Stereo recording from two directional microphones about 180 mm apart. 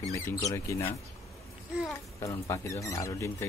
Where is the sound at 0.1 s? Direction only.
15° left (ahead or behind).